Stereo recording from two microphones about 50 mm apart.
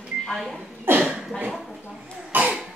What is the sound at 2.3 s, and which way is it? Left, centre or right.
Cough, right.